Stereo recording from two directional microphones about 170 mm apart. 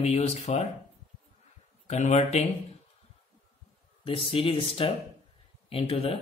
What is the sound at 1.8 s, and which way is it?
Speech, 40° left (ahead or behind).